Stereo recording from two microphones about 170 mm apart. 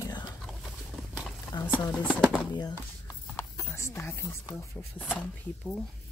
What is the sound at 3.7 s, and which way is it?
Speech, 15° left (ahead or behind).